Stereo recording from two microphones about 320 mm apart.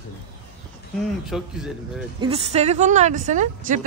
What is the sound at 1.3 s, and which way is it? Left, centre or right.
Speech, centre.